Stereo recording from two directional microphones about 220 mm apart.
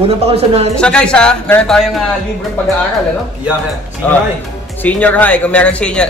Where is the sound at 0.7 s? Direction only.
5° left (ahead or behind).